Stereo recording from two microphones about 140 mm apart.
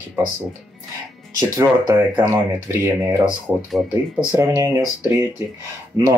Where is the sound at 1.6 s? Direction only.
20° right (ahead or behind).